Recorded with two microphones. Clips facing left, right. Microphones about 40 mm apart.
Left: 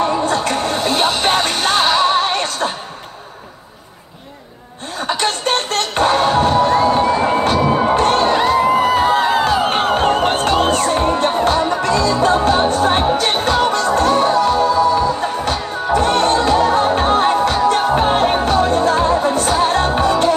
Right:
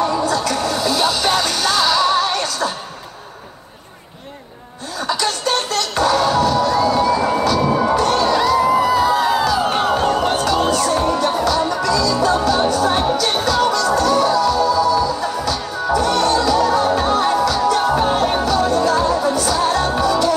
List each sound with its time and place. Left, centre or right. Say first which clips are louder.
0.0 s music: left 1 dB; left
5.0 s music: left 2 dB; left